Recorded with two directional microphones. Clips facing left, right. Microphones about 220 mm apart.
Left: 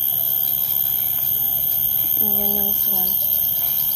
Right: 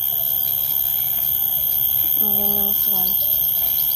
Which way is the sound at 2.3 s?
10° left (ahead or behind).